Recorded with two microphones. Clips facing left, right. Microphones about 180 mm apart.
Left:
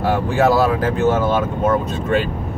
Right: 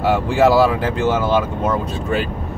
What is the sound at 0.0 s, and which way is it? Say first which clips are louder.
Speech: right 2 dB; centre (ahead or behind).